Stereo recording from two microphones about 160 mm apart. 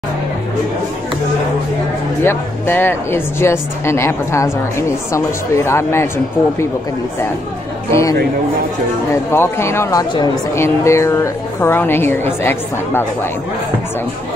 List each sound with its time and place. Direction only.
2.2 s a woman's voice: 15° left (ahead or behind)
7.9 s a woman's voice: 20° left (ahead or behind)